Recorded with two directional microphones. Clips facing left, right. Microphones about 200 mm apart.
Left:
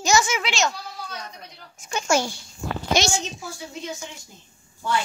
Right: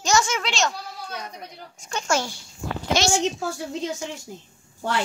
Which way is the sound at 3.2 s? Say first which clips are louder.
Right 8 dB; 70° right (ahead or behind).